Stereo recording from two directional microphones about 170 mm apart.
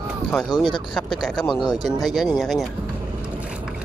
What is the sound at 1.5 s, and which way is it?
Speech, 25° left (ahead or behind).